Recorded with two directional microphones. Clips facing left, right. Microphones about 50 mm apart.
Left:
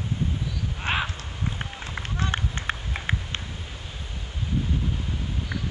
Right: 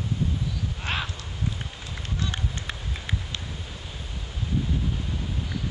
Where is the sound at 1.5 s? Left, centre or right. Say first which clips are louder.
Left 3 dB; left.